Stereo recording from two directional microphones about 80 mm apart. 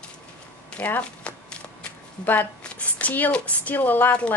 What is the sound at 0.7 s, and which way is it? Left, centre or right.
Shuffling cards, centre.